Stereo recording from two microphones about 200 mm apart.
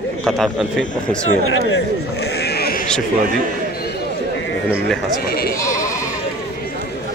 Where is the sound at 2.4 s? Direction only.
50° left (ahead or behind).